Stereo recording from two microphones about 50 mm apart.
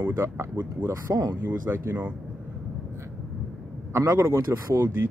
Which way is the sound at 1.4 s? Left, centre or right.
Right.